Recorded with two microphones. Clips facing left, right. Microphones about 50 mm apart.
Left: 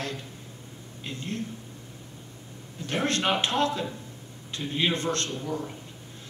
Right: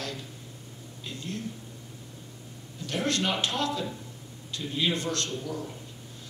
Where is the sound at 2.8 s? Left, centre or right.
Left.